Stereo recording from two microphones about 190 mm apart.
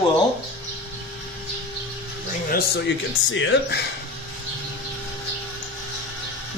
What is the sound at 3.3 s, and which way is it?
Speech, 75° left (ahead or behind).